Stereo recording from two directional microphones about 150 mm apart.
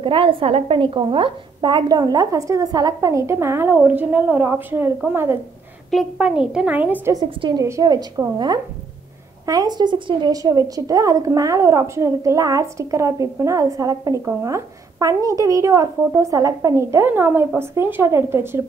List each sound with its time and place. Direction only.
0.0 s a woman's voice: 35° right (ahead or behind); by 5.4 s 15° right (ahead or behind)
5.9 s a woman's voice: centre (ahead or behind)
7.2 s a woman's voice: 30° right (ahead or behind); by 18.6 s 15° right (ahead or behind)